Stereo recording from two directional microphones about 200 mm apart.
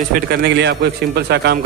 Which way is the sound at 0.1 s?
55° right (ahead or behind).